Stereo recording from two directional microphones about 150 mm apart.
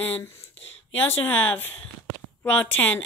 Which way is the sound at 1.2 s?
10° left (ahead or behind).